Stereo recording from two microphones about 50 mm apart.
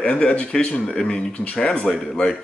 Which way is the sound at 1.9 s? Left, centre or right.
Centre.